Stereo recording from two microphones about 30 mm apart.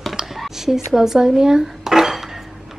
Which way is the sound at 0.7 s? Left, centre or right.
Centre.